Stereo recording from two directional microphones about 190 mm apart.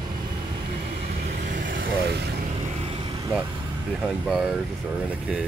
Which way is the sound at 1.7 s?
50° right (ahead or behind).